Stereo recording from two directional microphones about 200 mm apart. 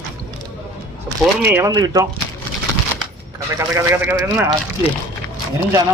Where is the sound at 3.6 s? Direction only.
15° right (ahead or behind).